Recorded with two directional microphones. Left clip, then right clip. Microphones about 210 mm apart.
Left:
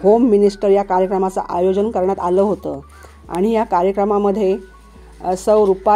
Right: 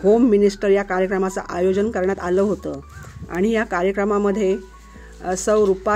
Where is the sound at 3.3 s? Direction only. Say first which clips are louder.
Left 4 dB; 5° right (ahead or behind).